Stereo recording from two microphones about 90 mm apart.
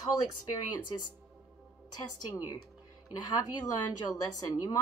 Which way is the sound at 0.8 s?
55° left (ahead or behind).